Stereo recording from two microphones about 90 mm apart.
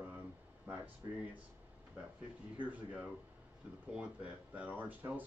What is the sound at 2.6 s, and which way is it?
Speech, 15° right (ahead or behind).